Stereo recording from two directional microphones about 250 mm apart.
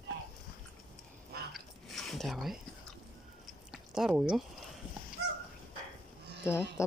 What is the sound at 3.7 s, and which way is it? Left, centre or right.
Speech, centre.